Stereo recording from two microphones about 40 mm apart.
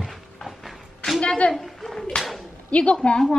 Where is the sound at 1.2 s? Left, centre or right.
Left.